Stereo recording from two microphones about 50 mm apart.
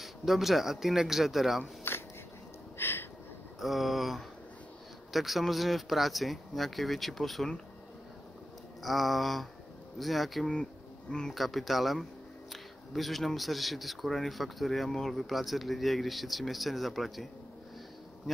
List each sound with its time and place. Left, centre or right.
0.0 s speech: centre
1.9 s a sound: left
3.5 s speech: centre
8.8 s speech: centre
10.5 s speech: centre
11.3 s speech: centre